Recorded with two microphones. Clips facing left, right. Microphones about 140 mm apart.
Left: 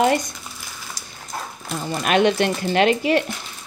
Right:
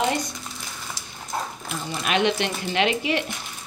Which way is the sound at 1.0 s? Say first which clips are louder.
Even; 40° left (ahead or behind).